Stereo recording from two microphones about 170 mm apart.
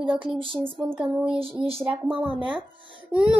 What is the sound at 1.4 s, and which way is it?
Child singing, 35° right (ahead or behind).